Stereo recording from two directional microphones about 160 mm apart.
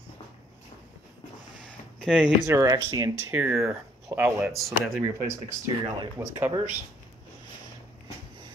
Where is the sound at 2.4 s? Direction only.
20° right (ahead or behind); by 5.0 s centre (ahead or behind).